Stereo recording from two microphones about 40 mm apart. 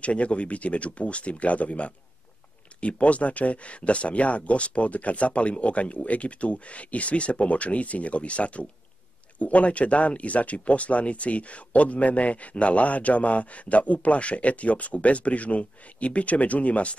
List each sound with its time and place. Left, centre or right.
0.0 s speech: left